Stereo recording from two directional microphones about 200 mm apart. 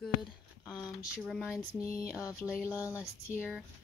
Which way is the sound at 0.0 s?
Centre (ahead or behind).